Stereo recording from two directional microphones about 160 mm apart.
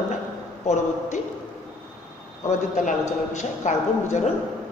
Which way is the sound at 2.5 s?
50° left (ahead or behind).